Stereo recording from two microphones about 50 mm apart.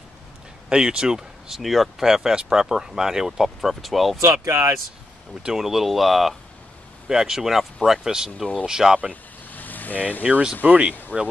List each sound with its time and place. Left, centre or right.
0.7 s speech: centre
1.6 s speech: centre
2.0 s speech: centre
4.2 s speech: right
5.4 s speech: centre
9.1 s vehicle: left
10.6 s speech: right
11.1 s speech: left